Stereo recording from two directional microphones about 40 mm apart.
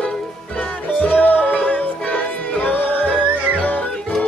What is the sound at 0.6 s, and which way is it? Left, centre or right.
Music, left.